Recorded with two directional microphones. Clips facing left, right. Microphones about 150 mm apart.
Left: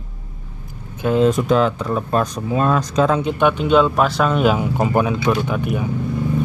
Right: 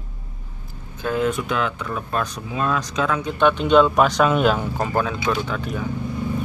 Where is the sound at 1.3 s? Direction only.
40° left (ahead or behind).